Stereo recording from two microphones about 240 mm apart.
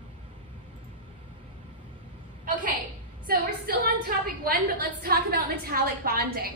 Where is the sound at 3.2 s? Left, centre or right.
Right.